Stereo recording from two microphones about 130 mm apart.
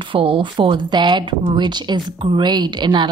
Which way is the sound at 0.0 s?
40° right (ahead or behind).